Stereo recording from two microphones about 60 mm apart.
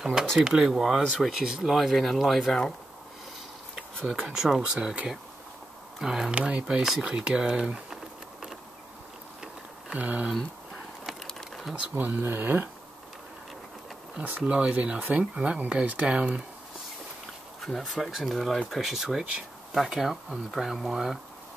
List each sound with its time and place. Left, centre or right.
0.0 s speech: centre
4.2 s speech: centre
6.3 s speech: centre
6.8 s speech: centre
7.1 s a sound: centre
9.9 s speech: right
11.1 s a sound: centre
12.0 s speech: right
14.4 s speech: centre
17.6 s speech: centre